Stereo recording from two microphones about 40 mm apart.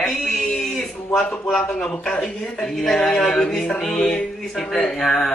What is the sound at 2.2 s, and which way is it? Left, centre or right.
A woman's voice, centre.